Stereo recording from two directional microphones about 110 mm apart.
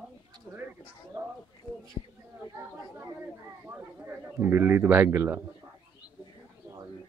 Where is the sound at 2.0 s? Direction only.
45° left (ahead or behind).